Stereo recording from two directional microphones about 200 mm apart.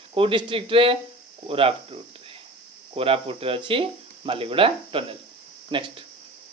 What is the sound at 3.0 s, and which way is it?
Speech, 30° right (ahead or behind).